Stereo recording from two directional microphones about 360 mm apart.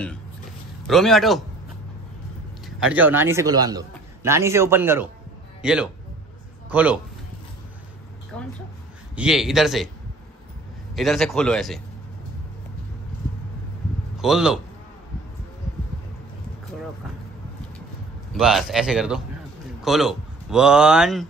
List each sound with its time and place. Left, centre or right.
0.8 s a man's voice: centre
2.9 s a man's voice: centre
9.1 s a man's voice: centre
11.0 s a man's voice: centre
14.1 s a man's voice: centre
18.3 s a man's voice: centre